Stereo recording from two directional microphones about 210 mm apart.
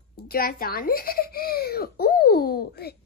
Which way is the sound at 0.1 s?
45° left (ahead or behind).